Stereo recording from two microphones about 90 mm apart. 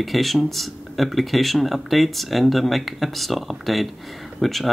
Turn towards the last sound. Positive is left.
turn(degrees=0)  # may be behind; listen again after turning